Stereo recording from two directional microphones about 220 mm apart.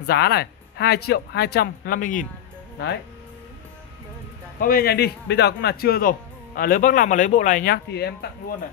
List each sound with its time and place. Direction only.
0.0 s speech: 45° left (ahead or behind)
4.6 s speech: 40° left (ahead or behind)